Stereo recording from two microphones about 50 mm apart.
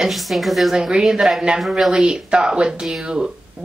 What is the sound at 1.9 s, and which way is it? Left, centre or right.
Speech, centre.